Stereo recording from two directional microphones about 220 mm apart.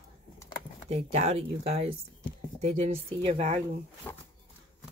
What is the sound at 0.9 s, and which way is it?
Speech, 30° right (ahead or behind).